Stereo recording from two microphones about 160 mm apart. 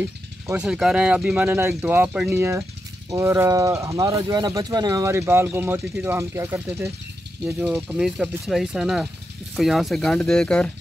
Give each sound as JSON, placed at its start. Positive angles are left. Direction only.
{"t": 0.5, "sound": "speech", "side_deg": -5}
{"t": 7.6, "sound": "speech", "side_deg": 0}